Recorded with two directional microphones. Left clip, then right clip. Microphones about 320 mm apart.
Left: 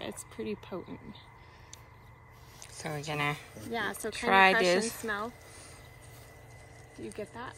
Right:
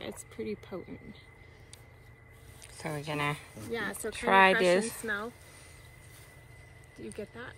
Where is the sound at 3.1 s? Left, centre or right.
Centre.